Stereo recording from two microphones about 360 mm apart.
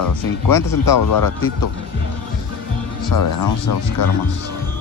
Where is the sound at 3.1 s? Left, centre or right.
Left.